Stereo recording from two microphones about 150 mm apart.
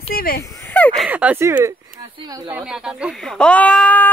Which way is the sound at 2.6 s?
5° right (ahead or behind).